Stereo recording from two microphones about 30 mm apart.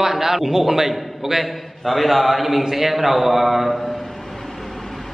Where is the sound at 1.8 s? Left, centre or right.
Centre.